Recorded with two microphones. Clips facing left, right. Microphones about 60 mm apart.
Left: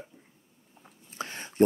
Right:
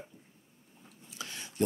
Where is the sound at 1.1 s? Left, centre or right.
Left.